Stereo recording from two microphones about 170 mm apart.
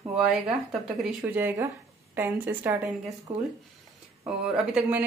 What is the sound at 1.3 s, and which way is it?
A woman's voice, 15° right (ahead or behind).